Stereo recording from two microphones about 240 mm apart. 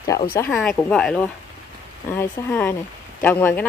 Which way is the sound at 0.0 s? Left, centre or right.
Centre.